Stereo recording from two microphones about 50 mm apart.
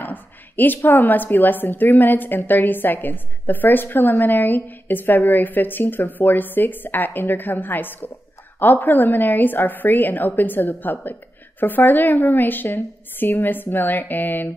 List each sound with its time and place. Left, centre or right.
0.0 s a woman's voice: left